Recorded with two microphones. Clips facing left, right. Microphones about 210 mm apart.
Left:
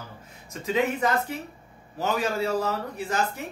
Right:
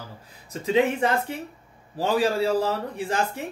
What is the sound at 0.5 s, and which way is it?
A man's voice, 30° right (ahead or behind).